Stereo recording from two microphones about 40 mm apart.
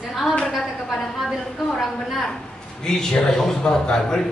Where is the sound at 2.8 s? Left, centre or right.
Centre.